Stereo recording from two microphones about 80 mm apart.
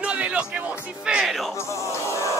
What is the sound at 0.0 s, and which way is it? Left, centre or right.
Music, centre.